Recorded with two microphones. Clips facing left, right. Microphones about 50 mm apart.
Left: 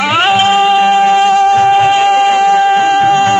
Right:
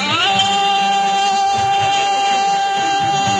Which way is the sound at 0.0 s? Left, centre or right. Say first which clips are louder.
Left 6 dB; left.